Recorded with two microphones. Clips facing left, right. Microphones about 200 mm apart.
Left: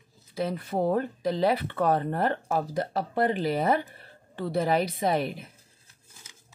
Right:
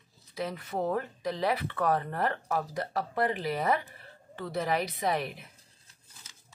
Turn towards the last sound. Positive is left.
turn(degrees=30)  # may be behind; listen again after turning